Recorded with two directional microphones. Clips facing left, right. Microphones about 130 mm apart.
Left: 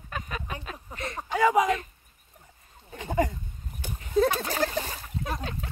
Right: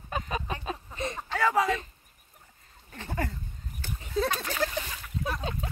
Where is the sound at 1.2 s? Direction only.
15° left (ahead or behind).